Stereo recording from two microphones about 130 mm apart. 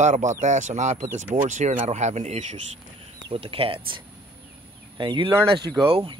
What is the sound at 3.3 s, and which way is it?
Speech, 45° right (ahead or behind).